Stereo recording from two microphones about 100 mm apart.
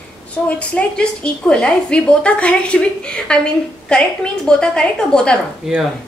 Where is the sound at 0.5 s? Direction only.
10° left (ahead or behind).